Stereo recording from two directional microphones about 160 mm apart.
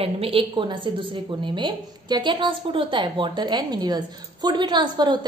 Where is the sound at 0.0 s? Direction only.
35° right (ahead or behind).